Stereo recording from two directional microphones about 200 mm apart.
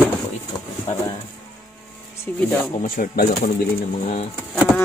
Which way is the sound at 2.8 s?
45° left (ahead or behind).